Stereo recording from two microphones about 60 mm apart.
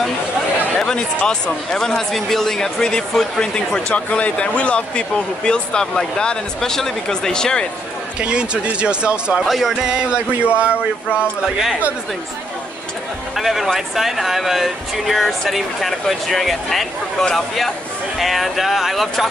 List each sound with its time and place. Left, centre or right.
0.7 s speech: centre
8.2 s speech: centre
9.5 s speech: centre
9.8 s speech: centre
10.7 s a sound: left
13.4 s speech: centre